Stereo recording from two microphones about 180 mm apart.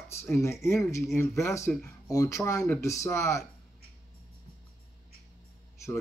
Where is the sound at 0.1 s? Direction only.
15° left (ahead or behind).